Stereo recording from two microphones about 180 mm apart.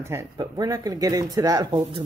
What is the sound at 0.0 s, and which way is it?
Speech, 15° right (ahead or behind).